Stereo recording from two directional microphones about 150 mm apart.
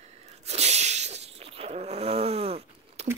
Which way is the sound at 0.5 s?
45° right (ahead or behind).